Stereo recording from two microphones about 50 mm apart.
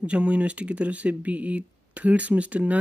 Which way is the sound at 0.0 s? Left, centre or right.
Right.